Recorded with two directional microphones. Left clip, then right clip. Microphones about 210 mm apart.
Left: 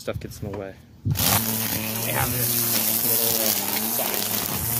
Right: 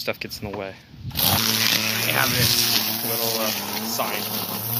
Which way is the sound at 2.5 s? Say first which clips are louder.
Right 6 dB; 50° left (ahead or behind).